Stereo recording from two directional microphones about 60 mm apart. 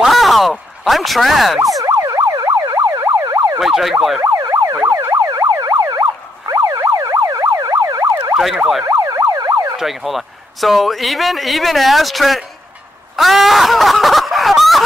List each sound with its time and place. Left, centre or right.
0.0 s a sound: centre
1.8 s emergency vehicle: right
3.5 s a man's voice: centre
4.2 s emergency vehicle: right
5.6 s emergency vehicle: right
9.8 s a man's voice: centre
13.1 s a sound: centre